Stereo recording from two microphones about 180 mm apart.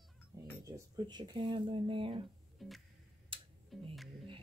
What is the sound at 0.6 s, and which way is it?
Speech, 20° right (ahead or behind).